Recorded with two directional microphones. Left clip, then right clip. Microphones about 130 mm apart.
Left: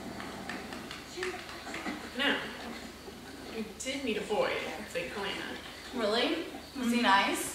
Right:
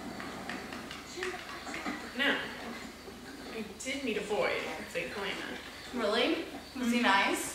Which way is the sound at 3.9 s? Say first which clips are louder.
Even; centre (ahead or behind).